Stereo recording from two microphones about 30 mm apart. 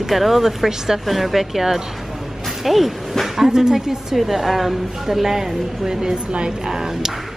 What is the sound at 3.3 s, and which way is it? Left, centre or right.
Speech, centre.